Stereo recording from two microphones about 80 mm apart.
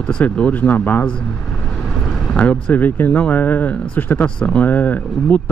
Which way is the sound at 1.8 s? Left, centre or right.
Centre.